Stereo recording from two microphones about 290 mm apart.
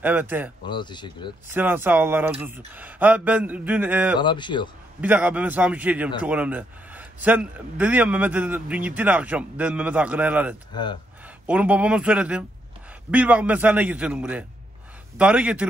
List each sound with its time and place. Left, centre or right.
0.0 s a man's voice: centre
0.7 s speech: centre
1.5 s a man's voice: centre
4.2 s speech: centre
5.0 s a man's voice: centre
10.7 s speech: centre
11.4 s a man's voice: centre